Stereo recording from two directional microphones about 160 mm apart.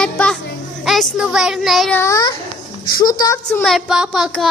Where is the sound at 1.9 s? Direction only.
20° left (ahead or behind).